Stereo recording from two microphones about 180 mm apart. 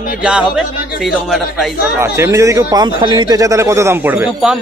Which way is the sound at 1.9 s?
15° right (ahead or behind).